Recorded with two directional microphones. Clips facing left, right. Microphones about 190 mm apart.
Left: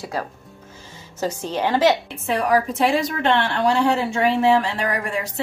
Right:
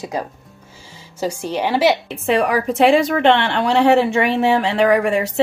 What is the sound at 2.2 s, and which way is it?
Speech, 65° right (ahead or behind).